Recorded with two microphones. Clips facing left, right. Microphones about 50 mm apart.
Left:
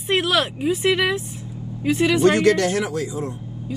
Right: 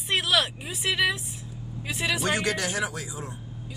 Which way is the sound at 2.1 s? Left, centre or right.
Centre.